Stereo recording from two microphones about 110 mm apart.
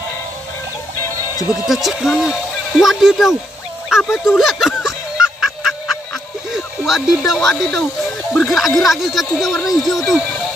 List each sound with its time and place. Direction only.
1.0 s music: 30° left (ahead or behind)
1.5 s speech: centre (ahead or behind)
4.8 s music: 5° right (ahead or behind)
6.5 s speech: centre (ahead or behind)